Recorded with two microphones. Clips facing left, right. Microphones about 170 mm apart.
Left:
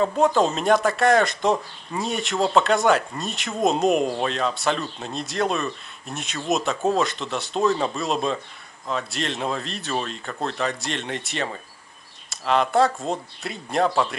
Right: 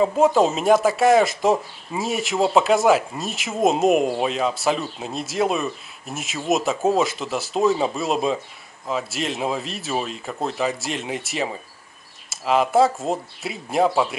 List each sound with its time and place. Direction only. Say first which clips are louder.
0.0 s speech: right 2 dB; centre (ahead or behind)